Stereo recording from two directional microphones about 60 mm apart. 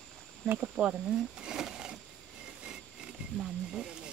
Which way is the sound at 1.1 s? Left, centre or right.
Centre.